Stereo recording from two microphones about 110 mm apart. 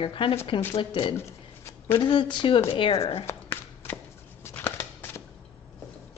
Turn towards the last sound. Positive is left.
turn(degrees=20)  # may be behind; listen again after turning